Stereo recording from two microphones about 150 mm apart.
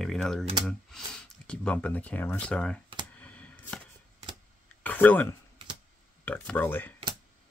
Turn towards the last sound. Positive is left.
turn(degrees=15)  # may be behind; listen again after turning